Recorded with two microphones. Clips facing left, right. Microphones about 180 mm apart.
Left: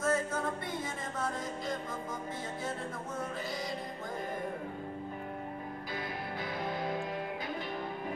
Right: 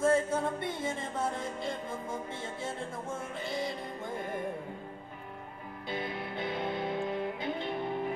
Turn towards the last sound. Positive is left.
turn(degrees=-25)  # may be behind; listen again after turning